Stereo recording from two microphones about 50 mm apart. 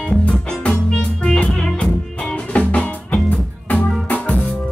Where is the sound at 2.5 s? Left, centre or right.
Left.